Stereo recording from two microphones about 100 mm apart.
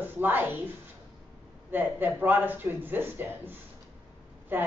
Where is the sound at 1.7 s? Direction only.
20° right (ahead or behind).